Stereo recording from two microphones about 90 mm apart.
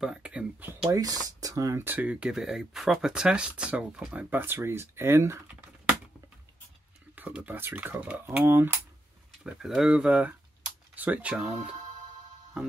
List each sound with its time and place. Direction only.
0.0 s a sound: 10° right (ahead or behind)
0.8 s speech: 40° right (ahead or behind)
1.9 s speech: 15° right (ahead or behind)
4.4 s speech: 25° right (ahead or behind)
7.2 s speech: 15° right (ahead or behind)
9.4 s speech: 10° right (ahead or behind)